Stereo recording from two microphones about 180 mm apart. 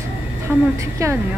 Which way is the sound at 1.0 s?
15° right (ahead or behind).